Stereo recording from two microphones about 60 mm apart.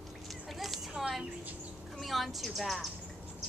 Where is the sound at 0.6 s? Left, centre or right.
Centre.